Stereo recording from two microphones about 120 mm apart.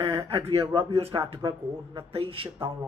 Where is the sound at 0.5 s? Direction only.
50° right (ahead or behind).